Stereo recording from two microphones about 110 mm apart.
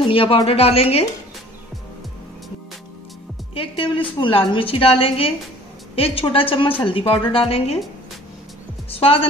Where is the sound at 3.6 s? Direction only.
50° left (ahead or behind).